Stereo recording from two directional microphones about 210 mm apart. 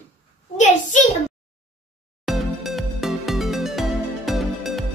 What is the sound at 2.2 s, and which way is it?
Music, centre (ahead or behind).